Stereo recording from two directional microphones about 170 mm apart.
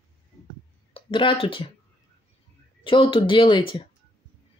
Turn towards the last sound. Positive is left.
turn(degrees=30)  # may be behind; listen again after turning